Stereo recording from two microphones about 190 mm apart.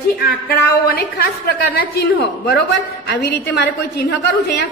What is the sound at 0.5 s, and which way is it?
A woman's voice, 50° left (ahead or behind).